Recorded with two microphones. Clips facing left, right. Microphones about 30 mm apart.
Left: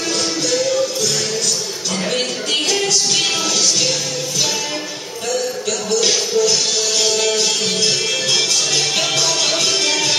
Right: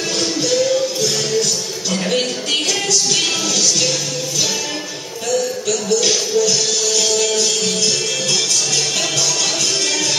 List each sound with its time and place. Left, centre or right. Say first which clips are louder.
0.4 s music: right 2 dB; centre
5.3 s music: right 2 dB; centre